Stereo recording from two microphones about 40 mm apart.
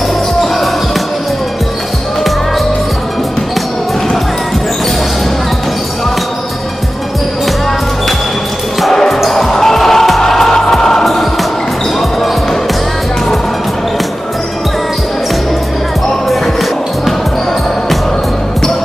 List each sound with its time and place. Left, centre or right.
8.9 s basketball bounce: centre